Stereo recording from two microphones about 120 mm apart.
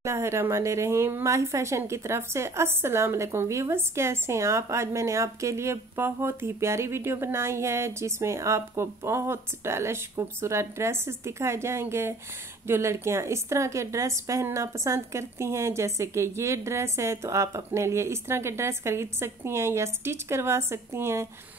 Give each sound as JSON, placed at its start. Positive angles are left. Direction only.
{"t": 0.0, "sound": "speech", "side_deg": -20}